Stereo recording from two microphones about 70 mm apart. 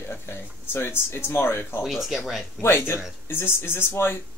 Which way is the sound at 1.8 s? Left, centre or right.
Centre.